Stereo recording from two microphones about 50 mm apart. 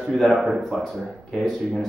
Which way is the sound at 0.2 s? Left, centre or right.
Centre.